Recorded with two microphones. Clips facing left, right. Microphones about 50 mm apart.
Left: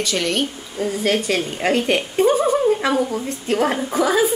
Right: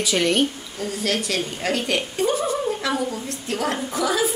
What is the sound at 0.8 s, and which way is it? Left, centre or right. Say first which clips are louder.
A woman's voice: left 5 dB; left.